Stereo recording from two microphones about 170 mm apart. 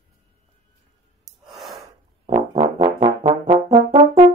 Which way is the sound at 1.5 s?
Centre (ahead or behind).